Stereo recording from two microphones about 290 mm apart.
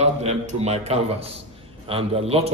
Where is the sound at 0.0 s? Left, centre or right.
Right.